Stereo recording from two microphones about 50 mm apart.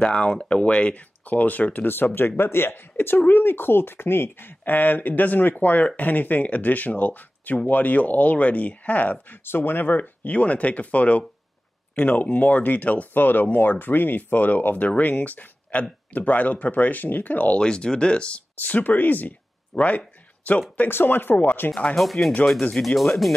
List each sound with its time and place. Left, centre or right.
0.0 s speech: centre; by 9.4 s left
9.4 s speech: left
17.6 s speech: centre
18.6 s speech: left
20.9 s speech: left
21.9 s speech: centre